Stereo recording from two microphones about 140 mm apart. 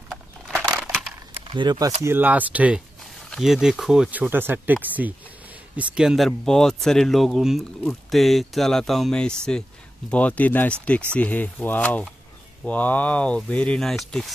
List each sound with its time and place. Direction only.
1.5 s speech: 30° right (ahead or behind)
2.0 s speech: 15° right (ahead or behind)
4.3 s speech: 15° right (ahead or behind); by 14.3 s centre (ahead or behind)